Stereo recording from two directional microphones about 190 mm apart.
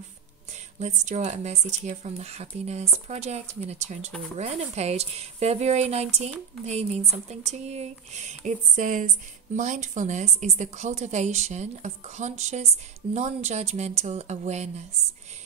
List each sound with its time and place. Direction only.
0.7 s speech: 40° right (ahead or behind)